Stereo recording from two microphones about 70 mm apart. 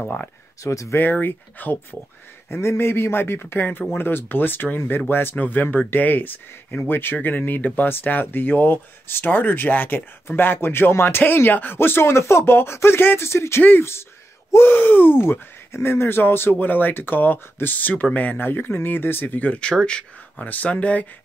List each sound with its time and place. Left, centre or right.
0.0 s speech: centre
0.7 s speech: left
0.9 s speech: left